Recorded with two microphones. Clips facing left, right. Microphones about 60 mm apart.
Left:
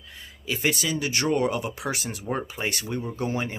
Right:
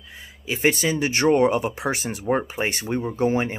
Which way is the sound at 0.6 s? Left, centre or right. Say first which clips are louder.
Right 6 dB; right.